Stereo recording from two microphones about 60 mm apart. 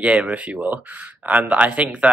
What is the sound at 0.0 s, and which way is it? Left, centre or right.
Speech, centre.